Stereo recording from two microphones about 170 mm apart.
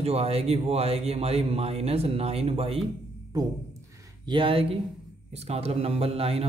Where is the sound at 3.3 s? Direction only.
25° right (ahead or behind).